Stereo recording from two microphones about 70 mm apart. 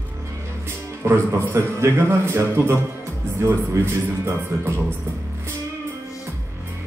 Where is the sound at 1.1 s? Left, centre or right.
Right.